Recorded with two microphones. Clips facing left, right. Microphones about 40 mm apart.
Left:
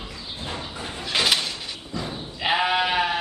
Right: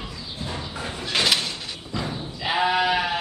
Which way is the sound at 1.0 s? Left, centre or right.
Centre.